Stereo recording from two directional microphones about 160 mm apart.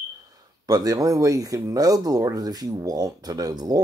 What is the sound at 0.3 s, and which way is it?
Speech, 25° right (ahead or behind).